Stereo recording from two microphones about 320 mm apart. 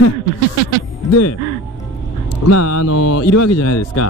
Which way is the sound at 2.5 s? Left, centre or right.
Left.